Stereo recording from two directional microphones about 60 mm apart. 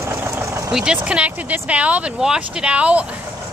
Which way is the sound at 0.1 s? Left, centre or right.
Right.